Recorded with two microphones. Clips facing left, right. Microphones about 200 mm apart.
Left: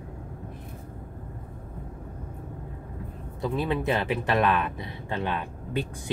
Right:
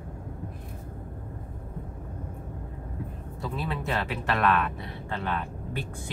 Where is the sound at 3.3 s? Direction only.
15° left (ahead or behind).